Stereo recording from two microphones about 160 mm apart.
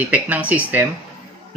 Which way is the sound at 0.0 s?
10° right (ahead or behind).